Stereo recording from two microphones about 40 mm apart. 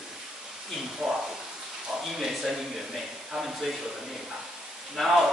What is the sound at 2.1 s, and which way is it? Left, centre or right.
Speech, centre.